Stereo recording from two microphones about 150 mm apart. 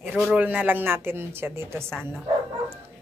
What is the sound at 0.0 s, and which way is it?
A woman's voice, 5° right (ahead or behind).